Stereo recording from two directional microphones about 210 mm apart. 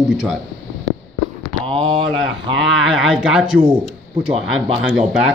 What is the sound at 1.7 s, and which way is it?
Speech, 25° right (ahead or behind).